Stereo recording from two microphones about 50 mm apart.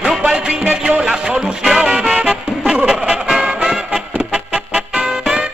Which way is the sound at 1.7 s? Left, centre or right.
Centre.